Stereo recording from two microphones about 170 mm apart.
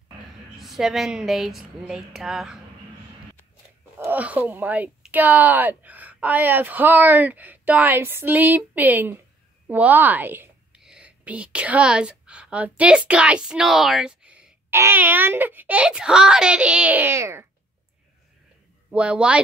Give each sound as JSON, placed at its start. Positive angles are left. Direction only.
{"t": 0.6, "sound": "speech", "side_deg": 0}
{"t": 4.0, "sound": "a woman's voice", "side_deg": -10}
{"t": 18.9, "sound": "speech", "side_deg": -5}